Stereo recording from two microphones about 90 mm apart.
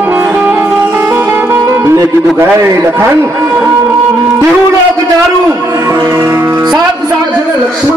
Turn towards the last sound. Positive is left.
turn(degrees=-30)  # may be behind; listen again after turning